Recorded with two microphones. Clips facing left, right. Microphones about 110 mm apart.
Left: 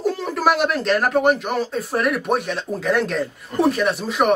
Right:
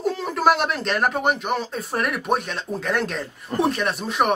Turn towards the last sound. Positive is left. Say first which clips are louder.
# left 3 dB
turn(degrees=0)  # may be behind; listen again after turning